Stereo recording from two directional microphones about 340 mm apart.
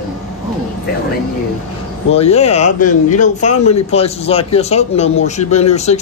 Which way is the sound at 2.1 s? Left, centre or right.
Centre.